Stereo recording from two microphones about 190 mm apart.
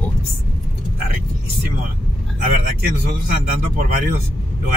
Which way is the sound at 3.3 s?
45° right (ahead or behind).